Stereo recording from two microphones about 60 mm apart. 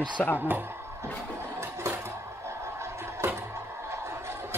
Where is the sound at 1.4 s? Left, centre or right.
Right.